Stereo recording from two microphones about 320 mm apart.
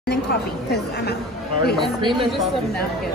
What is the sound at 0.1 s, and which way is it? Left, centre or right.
A woman's voice, left.